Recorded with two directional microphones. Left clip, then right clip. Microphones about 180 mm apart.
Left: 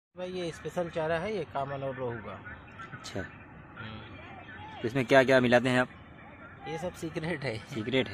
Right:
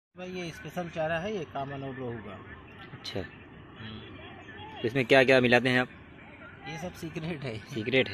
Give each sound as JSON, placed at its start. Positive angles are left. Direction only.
{"t": 0.2, "sound": "speech", "side_deg": 25}
{"t": 4.8, "sound": "speech", "side_deg": 5}
{"t": 6.6, "sound": "speech", "side_deg": 25}
{"t": 7.7, "sound": "speech", "side_deg": 5}